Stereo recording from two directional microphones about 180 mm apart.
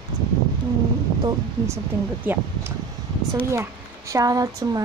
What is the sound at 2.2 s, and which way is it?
Speech, 10° right (ahead or behind).